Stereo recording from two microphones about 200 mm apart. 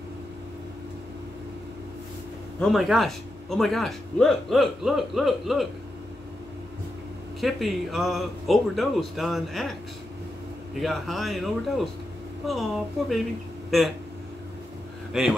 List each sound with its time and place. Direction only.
2.6 s speech: centre (ahead or behind)
7.3 s speech: centre (ahead or behind)
15.1 s speech: centre (ahead or behind)